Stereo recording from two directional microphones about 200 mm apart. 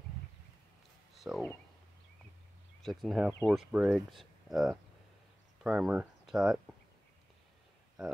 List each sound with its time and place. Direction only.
1.1 s speech: centre (ahead or behind)
2.8 s speech: centre (ahead or behind)